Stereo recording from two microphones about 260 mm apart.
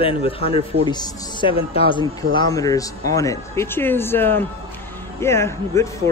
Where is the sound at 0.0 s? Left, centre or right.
Left.